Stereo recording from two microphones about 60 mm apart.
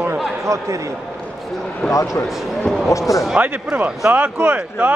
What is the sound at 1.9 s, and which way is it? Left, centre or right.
Speech, left.